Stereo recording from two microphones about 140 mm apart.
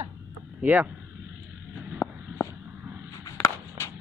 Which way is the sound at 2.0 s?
25° left (ahead or behind).